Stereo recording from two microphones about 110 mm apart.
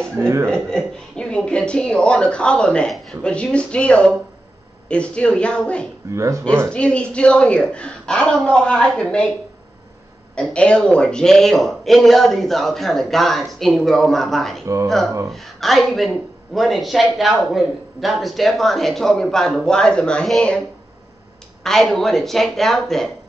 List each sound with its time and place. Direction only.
0.0 s a sound: 5° left (ahead or behind)
0.5 s speech: 5° left (ahead or behind)
6.1 s speech: 30° right (ahead or behind)
6.7 s speech: 10° left (ahead or behind)
10.3 s speech: 10° left (ahead or behind)
21.6 s speech: 5° left (ahead or behind)